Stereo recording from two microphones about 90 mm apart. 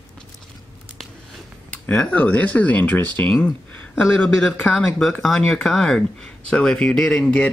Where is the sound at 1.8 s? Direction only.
15° left (ahead or behind).